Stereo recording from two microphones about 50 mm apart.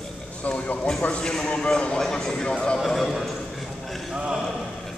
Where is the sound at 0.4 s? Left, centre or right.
Left.